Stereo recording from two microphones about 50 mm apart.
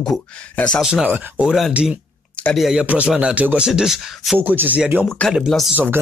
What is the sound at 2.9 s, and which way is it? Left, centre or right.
Speech, right.